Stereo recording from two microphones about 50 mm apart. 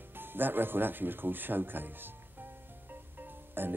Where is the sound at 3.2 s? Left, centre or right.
Right.